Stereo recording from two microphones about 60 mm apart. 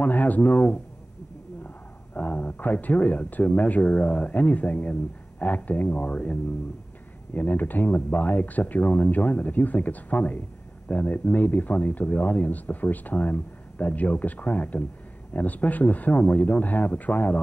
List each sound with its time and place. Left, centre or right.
0.0 s speech: left
2.1 s speech: left
7.3 s speech: left